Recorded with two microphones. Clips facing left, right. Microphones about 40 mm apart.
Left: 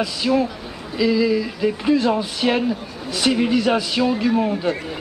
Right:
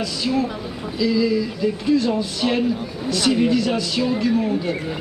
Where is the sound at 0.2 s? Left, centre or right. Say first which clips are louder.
Left 2 dB; centre.